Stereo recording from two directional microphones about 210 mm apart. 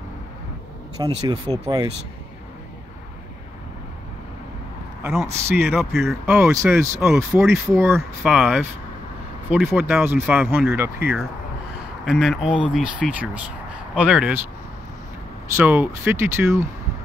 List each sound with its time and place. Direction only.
1.0 s speech: 20° right (ahead or behind)
5.0 s speech: 10° right (ahead or behind)
15.5 s speech: 10° right (ahead or behind)